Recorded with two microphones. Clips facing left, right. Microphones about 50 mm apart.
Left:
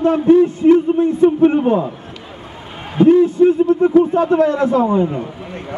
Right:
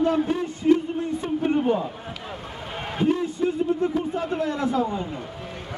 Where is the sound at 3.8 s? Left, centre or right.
Left.